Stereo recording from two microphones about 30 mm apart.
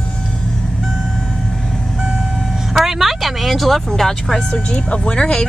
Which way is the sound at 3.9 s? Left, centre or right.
Centre.